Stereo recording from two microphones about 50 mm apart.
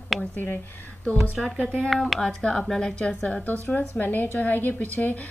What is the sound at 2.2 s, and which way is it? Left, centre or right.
A woman's voice, centre.